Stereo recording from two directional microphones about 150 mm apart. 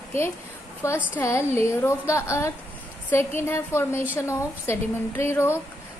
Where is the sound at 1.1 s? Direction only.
20° left (ahead or behind).